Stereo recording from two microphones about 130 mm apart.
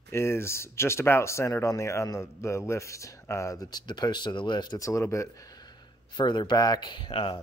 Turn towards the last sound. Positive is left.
turn(degrees=35)  # may be behind; listen again after turning